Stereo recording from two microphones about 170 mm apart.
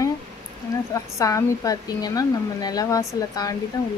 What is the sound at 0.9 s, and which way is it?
A woman's voice, 20° left (ahead or behind).